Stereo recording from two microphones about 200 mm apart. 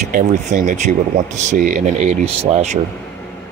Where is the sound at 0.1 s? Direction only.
40° right (ahead or behind).